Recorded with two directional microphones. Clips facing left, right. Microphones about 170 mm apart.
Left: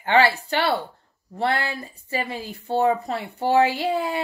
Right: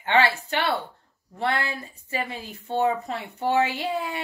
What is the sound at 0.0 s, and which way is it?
Speech, 35° left (ahead or behind).